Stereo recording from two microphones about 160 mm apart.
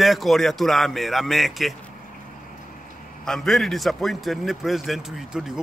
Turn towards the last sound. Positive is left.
turn(degrees=0)  # may be behind; listen again after turning